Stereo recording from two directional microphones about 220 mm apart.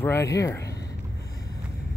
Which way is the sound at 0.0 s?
10° left (ahead or behind).